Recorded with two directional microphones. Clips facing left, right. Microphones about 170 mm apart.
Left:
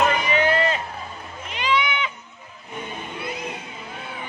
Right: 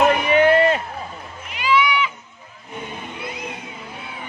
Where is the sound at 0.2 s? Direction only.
60° right (ahead or behind).